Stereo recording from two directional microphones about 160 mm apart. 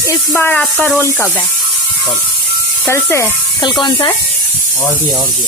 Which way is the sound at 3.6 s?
30° left (ahead or behind).